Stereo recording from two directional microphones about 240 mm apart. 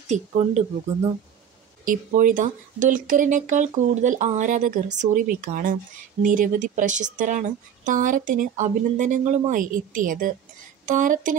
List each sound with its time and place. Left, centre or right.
0.1 s speech: right
1.9 s speech: right